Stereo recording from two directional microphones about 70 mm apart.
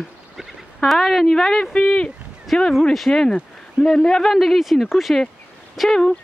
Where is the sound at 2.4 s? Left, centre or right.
Centre.